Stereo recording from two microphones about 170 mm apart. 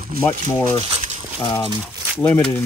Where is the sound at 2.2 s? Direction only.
10° left (ahead or behind).